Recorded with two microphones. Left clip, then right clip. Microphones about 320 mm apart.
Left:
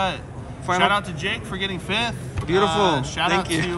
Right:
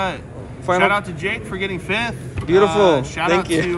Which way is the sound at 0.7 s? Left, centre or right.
Centre.